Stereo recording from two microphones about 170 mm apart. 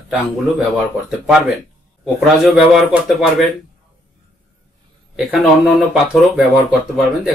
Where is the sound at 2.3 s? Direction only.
Centre (ahead or behind).